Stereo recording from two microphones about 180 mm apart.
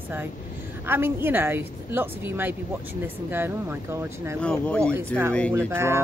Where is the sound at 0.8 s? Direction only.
15° right (ahead or behind).